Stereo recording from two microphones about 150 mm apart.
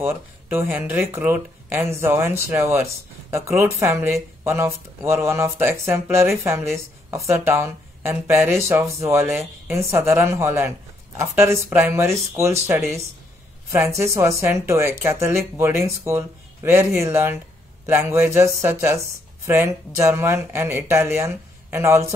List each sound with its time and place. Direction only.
0.0 s speech: 15° right (ahead or behind)